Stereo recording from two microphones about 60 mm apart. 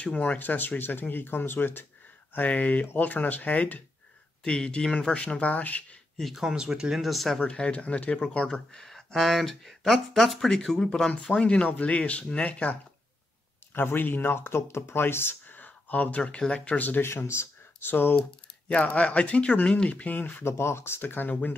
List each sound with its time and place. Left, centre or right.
0.0 s speech: left
2.3 s speech: left
6.1 s speech: centre
6.4 s speech: centre
7.3 s speech: centre
13.7 s speech: left
17.1 s speech: left
18.7 s speech: left
20.4 s speech: left